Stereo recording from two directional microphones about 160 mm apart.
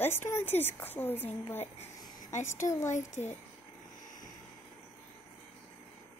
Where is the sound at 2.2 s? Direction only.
50° left (ahead or behind).